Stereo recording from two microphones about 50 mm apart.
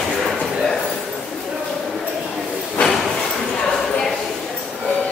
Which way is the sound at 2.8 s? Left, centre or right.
Left.